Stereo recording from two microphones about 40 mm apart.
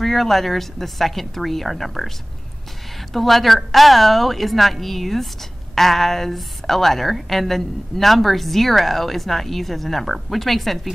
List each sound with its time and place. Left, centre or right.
0.0 s a woman's voice: centre
3.1 s a woman's voice: centre